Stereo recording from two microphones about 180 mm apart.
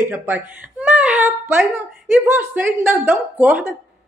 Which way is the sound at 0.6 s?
10° right (ahead or behind).